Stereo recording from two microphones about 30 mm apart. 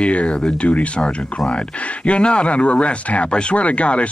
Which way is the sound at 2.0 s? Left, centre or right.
Left.